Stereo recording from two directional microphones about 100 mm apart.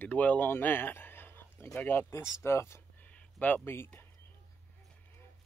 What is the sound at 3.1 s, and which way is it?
Speech, 15° left (ahead or behind).